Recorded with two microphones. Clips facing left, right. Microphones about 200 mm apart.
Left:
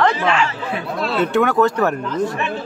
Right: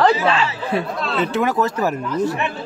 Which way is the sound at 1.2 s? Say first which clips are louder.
Left 3 dB; centre (ahead or behind).